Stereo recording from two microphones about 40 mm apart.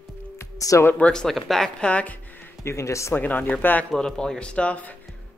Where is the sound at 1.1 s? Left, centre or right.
Centre.